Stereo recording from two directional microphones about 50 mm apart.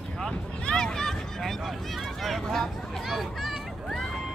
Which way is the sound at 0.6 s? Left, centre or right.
Centre.